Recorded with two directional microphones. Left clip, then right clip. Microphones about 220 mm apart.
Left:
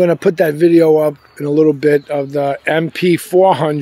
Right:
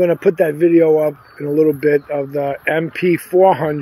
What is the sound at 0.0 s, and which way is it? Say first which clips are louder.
Speech: left 2 dB; 35° left (ahead or behind).